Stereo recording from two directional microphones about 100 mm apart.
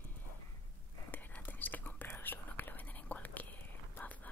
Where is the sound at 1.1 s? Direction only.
20° left (ahead or behind).